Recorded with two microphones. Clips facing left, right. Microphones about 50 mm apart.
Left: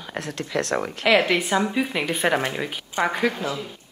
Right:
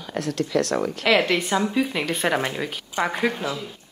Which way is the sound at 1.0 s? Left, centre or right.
Centre.